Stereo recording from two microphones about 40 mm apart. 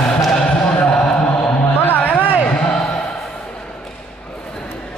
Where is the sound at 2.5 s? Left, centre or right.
Left.